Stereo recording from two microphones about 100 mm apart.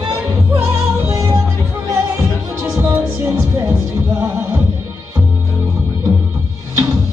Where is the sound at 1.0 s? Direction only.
30° right (ahead or behind).